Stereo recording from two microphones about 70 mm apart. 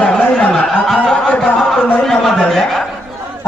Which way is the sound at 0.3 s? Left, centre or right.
Centre.